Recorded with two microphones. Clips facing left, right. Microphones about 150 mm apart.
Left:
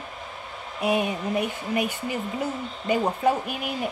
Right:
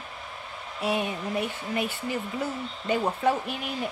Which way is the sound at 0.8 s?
15° left (ahead or behind).